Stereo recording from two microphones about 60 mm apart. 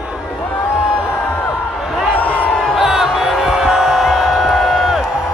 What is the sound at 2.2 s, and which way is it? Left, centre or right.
Crowd, left.